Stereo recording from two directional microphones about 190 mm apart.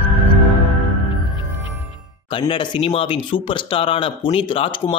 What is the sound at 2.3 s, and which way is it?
Speech, 25° left (ahead or behind).